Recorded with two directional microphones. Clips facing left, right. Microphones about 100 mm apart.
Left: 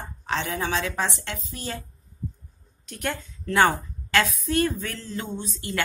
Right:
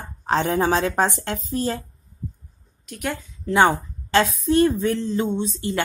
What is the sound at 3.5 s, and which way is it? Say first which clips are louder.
A woman's voice: right 3 dB; 20° right (ahead or behind).